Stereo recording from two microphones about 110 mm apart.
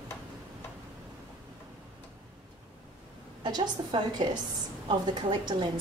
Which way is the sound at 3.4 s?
40° right (ahead or behind).